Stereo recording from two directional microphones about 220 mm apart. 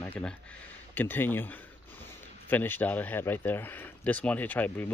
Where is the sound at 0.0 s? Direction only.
5° left (ahead or behind).